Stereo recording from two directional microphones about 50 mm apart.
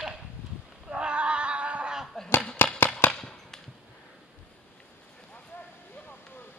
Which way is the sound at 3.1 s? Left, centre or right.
Centre.